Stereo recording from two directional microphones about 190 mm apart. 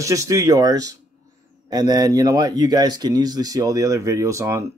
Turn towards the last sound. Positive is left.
turn(degrees=-15)  # may be behind; listen again after turning